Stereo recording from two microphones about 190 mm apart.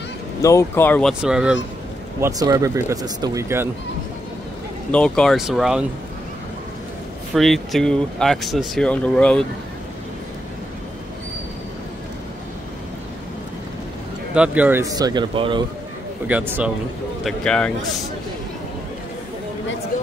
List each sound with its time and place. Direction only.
0.4 s speech: 15° left (ahead or behind)
1.2 s speech: 5° right (ahead or behind)
2.1 s speech: 15° right (ahead or behind)
4.9 s speech: 5° left (ahead or behind)
7.3 s speech: centre (ahead or behind)
14.3 s speech: 5° right (ahead or behind); by 15.6 s 25° right (ahead or behind)
16.3 s speech: 10° right (ahead or behind)
17.2 s speech: centre (ahead or behind)